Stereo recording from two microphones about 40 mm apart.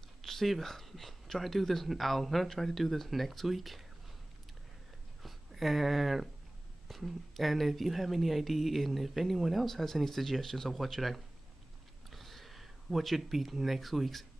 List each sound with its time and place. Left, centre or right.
0.2 s speech: centre
5.2 s speech: centre